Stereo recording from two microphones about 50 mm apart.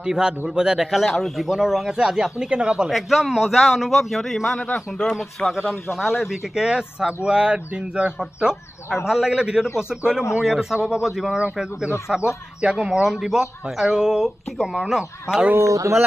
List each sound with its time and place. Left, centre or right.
0.0 s speech: centre
1.5 s speech: centre
2.9 s a man's voice: centre
4.7 s speech: centre
5.9 s speech: centre
15.6 s speech: right